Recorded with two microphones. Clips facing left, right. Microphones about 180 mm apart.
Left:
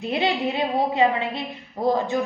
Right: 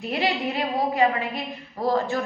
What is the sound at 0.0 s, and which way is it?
A woman's voice, 20° left (ahead or behind).